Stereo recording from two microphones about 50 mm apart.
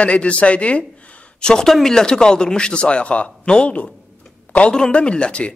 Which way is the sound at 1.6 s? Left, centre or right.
Centre.